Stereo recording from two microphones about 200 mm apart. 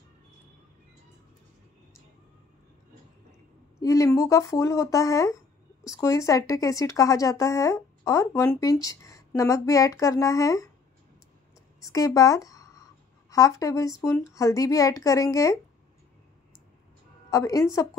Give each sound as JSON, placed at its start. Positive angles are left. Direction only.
{"t": 3.8, "sound": "speech", "side_deg": 15}
{"t": 11.8, "sound": "speech", "side_deg": 15}
{"t": 17.3, "sound": "a woman's voice", "side_deg": 15}